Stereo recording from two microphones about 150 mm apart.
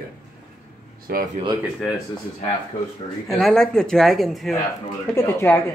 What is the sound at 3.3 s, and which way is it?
Speech, 5° left (ahead or behind).